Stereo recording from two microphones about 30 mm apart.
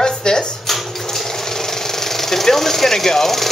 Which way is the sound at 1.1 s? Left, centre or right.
Centre.